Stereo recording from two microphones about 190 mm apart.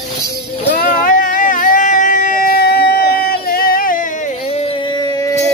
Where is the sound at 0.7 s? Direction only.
45° left (ahead or behind).